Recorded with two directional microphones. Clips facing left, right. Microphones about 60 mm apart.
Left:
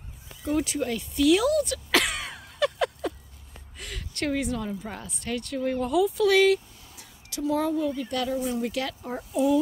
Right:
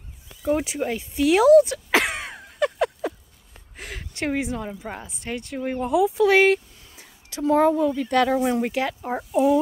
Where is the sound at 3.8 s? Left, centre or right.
Right.